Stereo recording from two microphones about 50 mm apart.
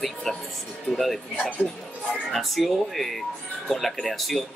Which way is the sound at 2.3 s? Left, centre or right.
Centre.